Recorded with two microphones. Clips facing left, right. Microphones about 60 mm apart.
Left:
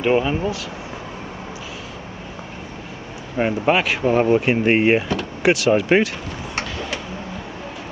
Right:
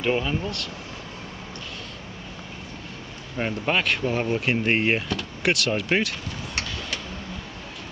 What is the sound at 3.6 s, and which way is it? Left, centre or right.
Speech, centre.